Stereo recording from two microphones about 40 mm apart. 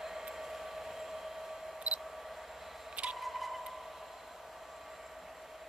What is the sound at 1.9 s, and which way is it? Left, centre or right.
Camera, right.